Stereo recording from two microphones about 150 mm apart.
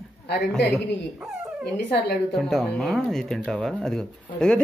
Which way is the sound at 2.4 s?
Centre (ahead or behind).